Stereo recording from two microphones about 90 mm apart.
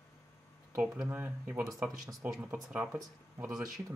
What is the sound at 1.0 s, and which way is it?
Speech, 20° right (ahead or behind).